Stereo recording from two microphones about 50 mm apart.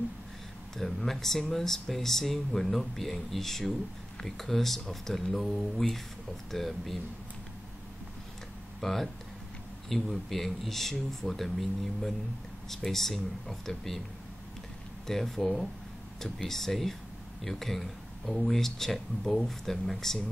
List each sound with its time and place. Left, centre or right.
0.7 s speech: centre
8.8 s speech: centre
15.0 s speech: centre